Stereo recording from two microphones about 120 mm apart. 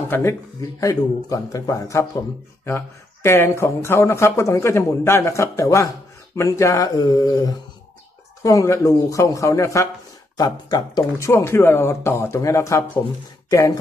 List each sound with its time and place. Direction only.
0.1 s speech: 20° left (ahead or behind)